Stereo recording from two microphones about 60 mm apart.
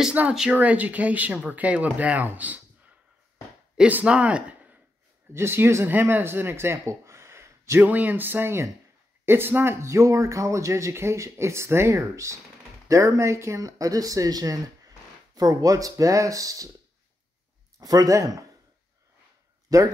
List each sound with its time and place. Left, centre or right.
0.2 s speech: right
4.0 s speech: centre
5.3 s speech: right
5.9 s speech: right
7.8 s speech: right
9.8 s speech: right
17.7 s speech: right
19.7 s speech: right